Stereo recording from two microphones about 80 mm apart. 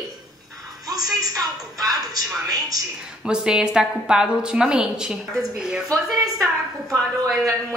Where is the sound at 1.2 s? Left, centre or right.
Right.